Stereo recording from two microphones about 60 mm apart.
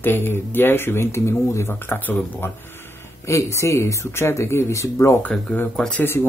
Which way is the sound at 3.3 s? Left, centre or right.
Left.